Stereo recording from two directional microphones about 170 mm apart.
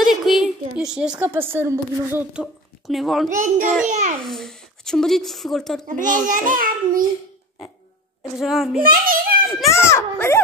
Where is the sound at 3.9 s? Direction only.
45° right (ahead or behind).